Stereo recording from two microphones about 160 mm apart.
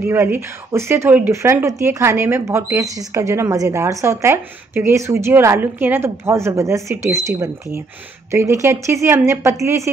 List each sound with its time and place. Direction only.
0.0 s speech: 15° right (ahead or behind)